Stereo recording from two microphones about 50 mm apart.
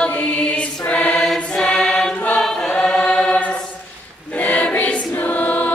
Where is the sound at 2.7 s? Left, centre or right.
Left.